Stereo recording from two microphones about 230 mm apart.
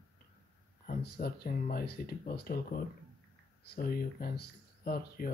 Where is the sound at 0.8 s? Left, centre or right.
Left.